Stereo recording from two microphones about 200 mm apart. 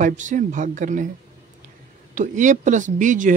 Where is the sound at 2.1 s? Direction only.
40° right (ahead or behind).